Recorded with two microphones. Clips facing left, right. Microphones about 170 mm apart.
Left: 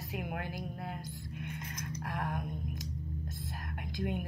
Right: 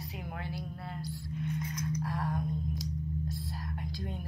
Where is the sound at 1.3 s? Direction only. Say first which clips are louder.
Right 8 dB; 65° left (ahead or behind).